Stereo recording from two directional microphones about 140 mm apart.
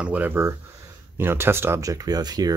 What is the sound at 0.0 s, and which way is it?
Speech, 10° right (ahead or behind).